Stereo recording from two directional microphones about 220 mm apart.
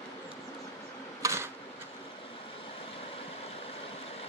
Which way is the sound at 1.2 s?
15° right (ahead or behind).